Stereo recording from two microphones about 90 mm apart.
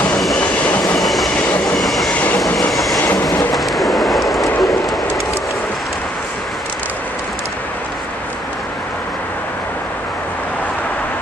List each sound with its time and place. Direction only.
0.4 s train: 15° left (ahead or behind)
0.9 s train: centre (ahead or behind)
2.1 s train: 15° left (ahead or behind)
2.7 s train: centre (ahead or behind)
3.0 s train: 20° left (ahead or behind)
3.5 s a sound: centre (ahead or behind)